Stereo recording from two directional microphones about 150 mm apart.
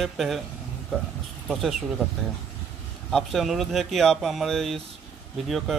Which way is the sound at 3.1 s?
Centre (ahead or behind).